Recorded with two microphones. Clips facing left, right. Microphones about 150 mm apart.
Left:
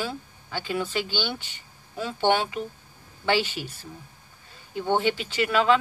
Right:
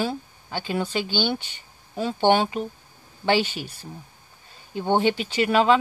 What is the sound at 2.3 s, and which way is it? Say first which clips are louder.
Speech: right 3 dB; 35° right (ahead or behind).